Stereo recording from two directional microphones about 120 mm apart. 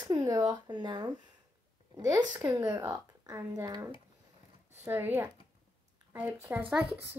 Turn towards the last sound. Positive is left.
turn(degrees=-5)  # may be behind; listen again after turning